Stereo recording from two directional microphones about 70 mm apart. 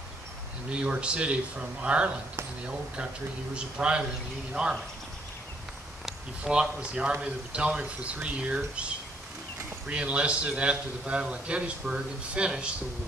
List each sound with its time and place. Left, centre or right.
0.7 s a man's voice: centre
3.5 s a man's voice: centre
6.4 s a man's voice: centre